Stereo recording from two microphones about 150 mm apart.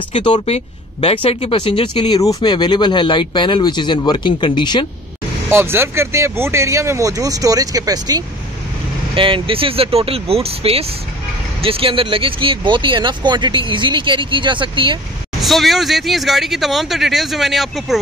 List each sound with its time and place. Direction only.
0.2 s speech: 30° left (ahead or behind)
5.5 s speech: 15° right (ahead or behind)
9.1 s speech: 35° right (ahead or behind)
15.4 s speech: centre (ahead or behind)